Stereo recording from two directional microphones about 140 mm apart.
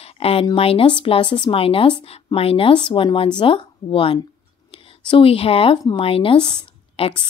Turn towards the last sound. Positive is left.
turn(degrees=35)  # may be behind; listen again after turning